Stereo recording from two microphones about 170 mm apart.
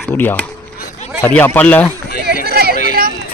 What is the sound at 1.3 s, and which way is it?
Speech, 10° left (ahead or behind).